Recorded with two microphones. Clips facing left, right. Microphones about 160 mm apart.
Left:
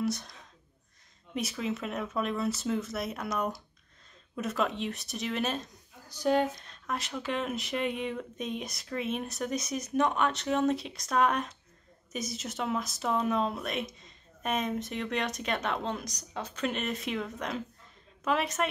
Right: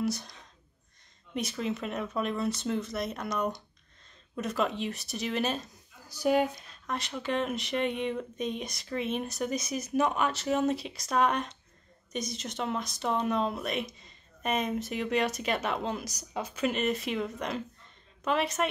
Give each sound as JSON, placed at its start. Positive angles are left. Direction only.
{"t": 0.0, "sound": "a woman's voice", "side_deg": 0}